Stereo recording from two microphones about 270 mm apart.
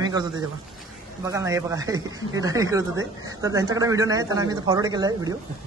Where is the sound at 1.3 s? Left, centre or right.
Centre.